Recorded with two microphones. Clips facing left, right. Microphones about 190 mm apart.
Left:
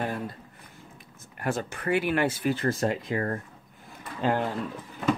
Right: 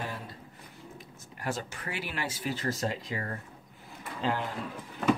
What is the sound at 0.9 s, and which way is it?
Speech, 55° left (ahead or behind).